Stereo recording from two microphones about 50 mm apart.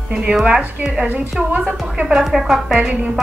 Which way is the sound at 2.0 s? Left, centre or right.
Centre.